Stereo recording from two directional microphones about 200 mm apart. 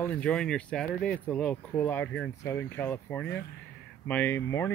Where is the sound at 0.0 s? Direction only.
5° left (ahead or behind).